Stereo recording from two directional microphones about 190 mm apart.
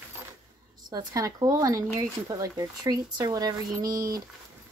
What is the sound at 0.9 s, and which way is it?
Speech, 20° right (ahead or behind).